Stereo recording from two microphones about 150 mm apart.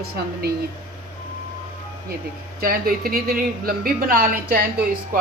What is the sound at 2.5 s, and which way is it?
A woman's voice, 75° right (ahead or behind).